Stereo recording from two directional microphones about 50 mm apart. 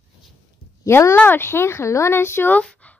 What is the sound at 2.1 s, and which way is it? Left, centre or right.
Speech, left.